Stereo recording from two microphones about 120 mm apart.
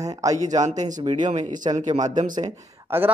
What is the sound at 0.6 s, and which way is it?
Speech, 80° right.